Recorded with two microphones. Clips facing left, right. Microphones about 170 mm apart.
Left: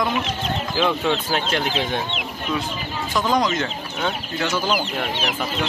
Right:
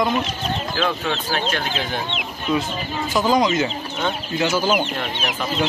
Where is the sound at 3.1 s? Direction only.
5° right (ahead or behind).